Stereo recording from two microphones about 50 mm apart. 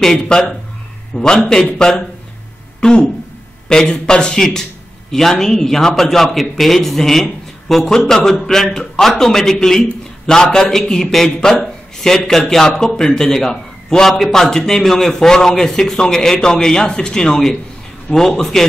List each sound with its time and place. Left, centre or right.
0.0 s a man's voice: centre
1.1 s a man's voice: centre